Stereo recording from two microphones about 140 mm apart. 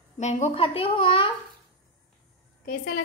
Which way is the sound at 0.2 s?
55° left (ahead or behind).